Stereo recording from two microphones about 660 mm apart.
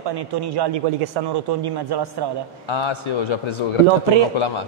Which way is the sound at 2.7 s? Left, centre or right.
Left.